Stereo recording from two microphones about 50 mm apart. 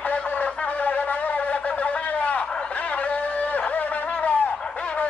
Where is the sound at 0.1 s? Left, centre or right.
Left.